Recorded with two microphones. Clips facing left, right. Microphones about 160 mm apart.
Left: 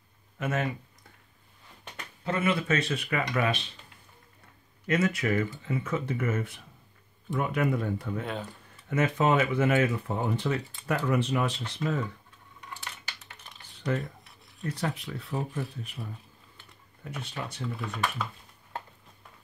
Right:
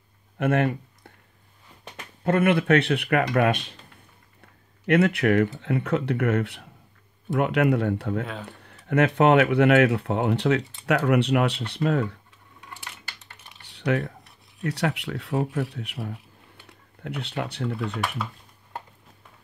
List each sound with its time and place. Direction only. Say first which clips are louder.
0.4 s speech: right 8 dB; 60° right (ahead or behind)
2.2 s speech: right 7 dB; 60° right (ahead or behind)
4.8 s speech: right 7 dB; 65° right (ahead or behind)
13.6 s computer keyboard: right 6 dB; 70° right (ahead or behind)
14.6 s speech: right 6 dB; 75° right (ahead or behind)